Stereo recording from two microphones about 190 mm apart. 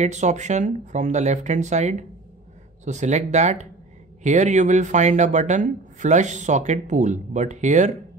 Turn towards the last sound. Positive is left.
turn(degrees=-40)  # may be behind; listen again after turning